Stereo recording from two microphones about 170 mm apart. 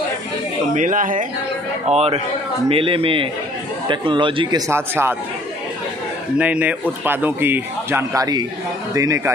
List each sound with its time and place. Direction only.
0.7 s speech: 50° right (ahead or behind)
1.9 s a man's voice: 35° right (ahead or behind); by 5.1 s 15° right (ahead or behind)
6.3 s a man's voice: 5° right (ahead or behind)